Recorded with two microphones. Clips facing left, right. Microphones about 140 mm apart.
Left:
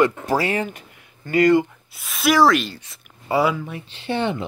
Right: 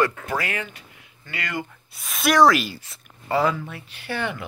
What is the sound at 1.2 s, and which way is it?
Speech, 40° left (ahead or behind).